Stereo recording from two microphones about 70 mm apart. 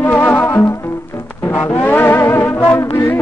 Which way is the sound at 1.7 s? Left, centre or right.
Left.